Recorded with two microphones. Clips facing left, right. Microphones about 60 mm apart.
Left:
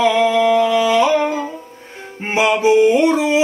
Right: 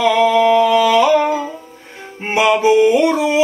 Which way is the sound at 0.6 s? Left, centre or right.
Left.